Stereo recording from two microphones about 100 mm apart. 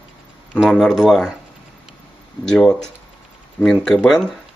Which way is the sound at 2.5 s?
5° left (ahead or behind).